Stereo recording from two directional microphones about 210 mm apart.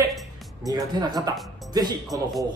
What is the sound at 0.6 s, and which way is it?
A man's voice, 20° right (ahead or behind).